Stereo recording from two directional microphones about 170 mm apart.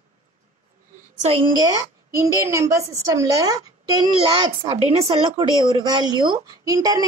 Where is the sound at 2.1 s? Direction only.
20° right (ahead or behind).